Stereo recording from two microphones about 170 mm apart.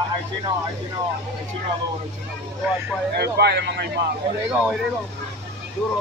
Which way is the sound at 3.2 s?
75° right (ahead or behind).